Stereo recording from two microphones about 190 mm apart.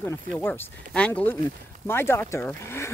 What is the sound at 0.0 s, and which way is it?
Speech, 10° left (ahead or behind).